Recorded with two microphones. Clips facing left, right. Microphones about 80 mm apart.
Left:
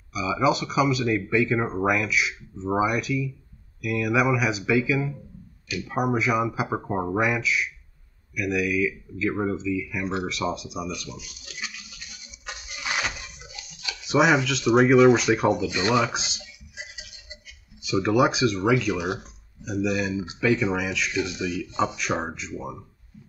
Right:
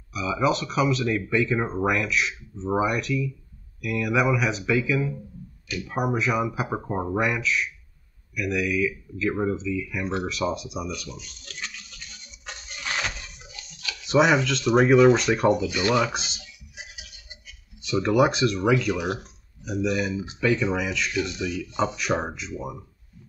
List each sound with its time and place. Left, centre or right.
0.1 s speech: centre
16.7 s a sound: left
17.7 s speech: centre